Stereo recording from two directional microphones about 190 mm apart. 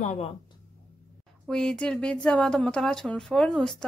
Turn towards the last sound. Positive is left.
turn(degrees=5)  # may be behind; listen again after turning